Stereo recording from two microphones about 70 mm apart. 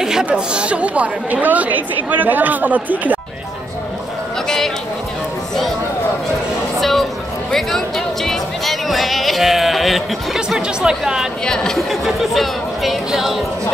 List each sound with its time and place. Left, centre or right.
0.0 s chatter: centre
0.3 s a woman's voice: centre
6.8 s music: centre
11.4 s speech: centre